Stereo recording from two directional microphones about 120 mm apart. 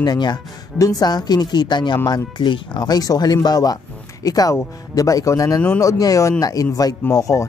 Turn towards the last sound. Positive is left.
turn(degrees=30)  # may be behind; listen again after turning